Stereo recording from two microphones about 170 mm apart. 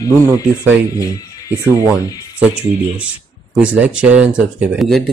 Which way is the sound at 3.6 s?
5° right (ahead or behind).